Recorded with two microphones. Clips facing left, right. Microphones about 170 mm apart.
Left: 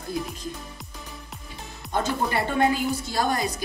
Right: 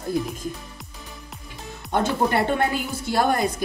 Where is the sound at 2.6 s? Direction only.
55° right (ahead or behind).